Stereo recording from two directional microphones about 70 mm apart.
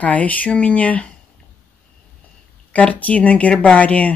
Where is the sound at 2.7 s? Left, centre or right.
Left.